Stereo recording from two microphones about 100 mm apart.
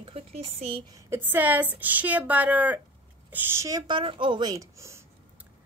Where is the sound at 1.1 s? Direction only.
20° right (ahead or behind).